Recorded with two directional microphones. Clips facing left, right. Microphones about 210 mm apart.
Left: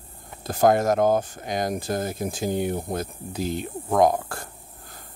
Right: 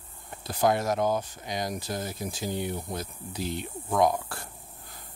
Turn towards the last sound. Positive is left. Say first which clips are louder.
# left 5 dB
turn(degrees=45)  # may be behind; listen again after turning